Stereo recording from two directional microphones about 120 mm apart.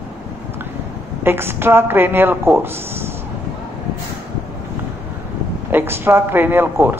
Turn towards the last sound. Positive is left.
turn(degrees=-15)  # may be behind; listen again after turning